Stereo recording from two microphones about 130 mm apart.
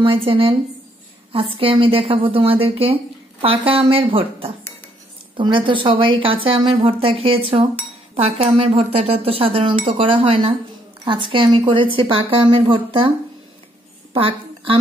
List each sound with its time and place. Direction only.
0.0 s a woman's voice: 45° right (ahead or behind)
14.1 s speech: 45° right (ahead or behind)